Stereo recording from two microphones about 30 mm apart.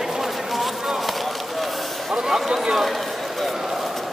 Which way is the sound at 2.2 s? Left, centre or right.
Centre.